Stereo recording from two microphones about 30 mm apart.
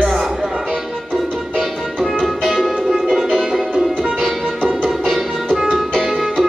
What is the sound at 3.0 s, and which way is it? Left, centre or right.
Music, centre.